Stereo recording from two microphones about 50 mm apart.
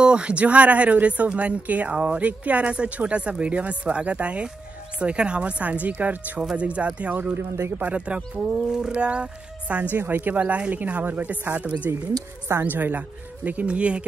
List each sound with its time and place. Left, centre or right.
0.0 s speech: right
7.3 s speech: right
7.8 s speech: right
10.4 s speech: right
12.6 s speech: right